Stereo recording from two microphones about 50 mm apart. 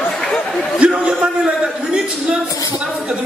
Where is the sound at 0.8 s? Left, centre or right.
Right.